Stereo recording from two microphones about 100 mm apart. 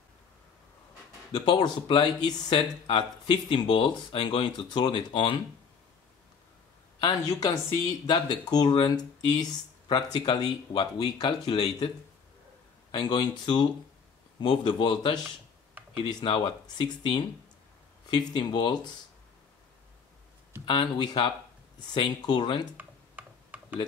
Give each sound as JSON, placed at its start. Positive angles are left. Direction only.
{"t": 1.3, "sound": "speech", "side_deg": 45}
{"t": 7.0, "sound": "speech", "side_deg": 40}
{"t": 12.9, "sound": "speech", "side_deg": 45}
{"t": 20.6, "sound": "speech", "side_deg": 55}
{"t": 22.8, "sound": "tick-tock", "side_deg": -15}